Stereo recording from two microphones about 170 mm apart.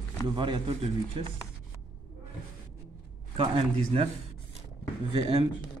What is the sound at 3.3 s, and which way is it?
Speech, 30° right (ahead or behind).